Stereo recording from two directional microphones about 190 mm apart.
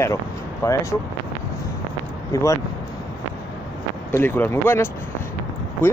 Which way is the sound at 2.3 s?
15° left (ahead or behind).